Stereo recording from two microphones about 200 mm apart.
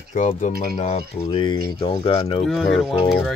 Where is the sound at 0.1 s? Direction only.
40° left (ahead or behind).